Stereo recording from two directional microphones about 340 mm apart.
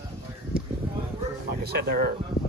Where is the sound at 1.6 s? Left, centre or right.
Right.